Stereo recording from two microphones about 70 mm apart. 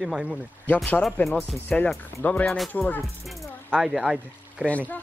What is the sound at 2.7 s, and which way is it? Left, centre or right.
Speech, left.